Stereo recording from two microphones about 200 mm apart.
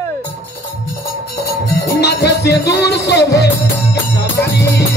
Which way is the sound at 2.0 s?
55° left (ahead or behind).